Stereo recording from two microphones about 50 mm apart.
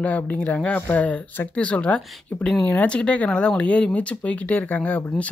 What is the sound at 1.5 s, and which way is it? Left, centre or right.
Speech, left.